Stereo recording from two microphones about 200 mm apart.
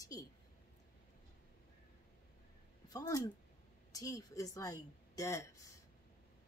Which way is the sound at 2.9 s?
15° left (ahead or behind).